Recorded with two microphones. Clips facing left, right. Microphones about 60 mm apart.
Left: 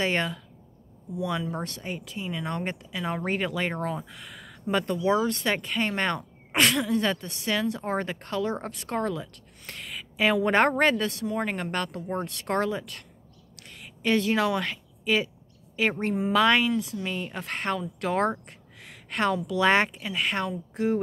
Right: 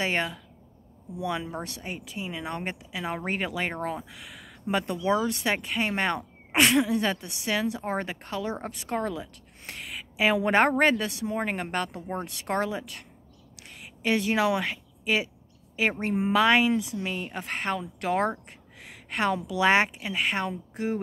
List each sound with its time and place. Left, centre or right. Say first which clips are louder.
0.0 s speech: left 1 dB; centre
1.5 s speech: left 2 dB; centre
4.1 s speech: left 1 dB; centre
13.6 s a sound: even; centre
16.2 s speech: right 1 dB; centre